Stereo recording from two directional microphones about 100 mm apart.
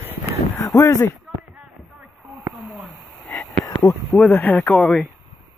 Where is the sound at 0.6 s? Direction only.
35° left (ahead or behind).